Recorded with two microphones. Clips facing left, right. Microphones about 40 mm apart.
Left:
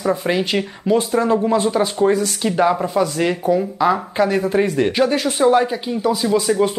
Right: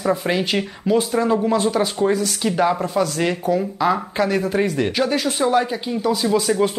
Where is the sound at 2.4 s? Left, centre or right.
Centre.